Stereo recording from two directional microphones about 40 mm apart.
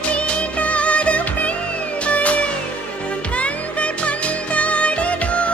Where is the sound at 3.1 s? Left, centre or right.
Left.